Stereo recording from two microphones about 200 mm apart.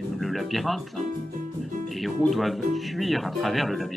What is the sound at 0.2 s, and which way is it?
Speech, centre (ahead or behind).